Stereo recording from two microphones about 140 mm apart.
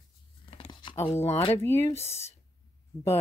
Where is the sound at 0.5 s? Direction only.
35° left (ahead or behind).